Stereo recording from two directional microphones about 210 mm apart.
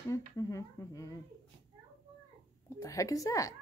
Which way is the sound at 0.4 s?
15° left (ahead or behind).